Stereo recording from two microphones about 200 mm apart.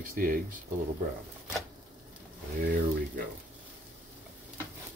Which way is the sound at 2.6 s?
45° right (ahead or behind).